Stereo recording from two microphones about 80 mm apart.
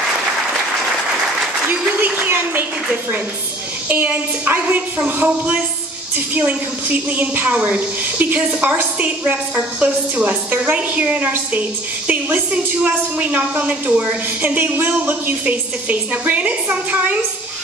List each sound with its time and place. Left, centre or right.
1.7 s a woman's voice: right